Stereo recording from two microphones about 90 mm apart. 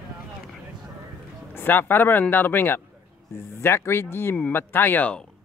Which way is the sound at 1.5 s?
25° left (ahead or behind).